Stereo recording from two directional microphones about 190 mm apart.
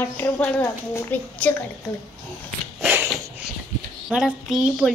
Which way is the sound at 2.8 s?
10° right (ahead or behind).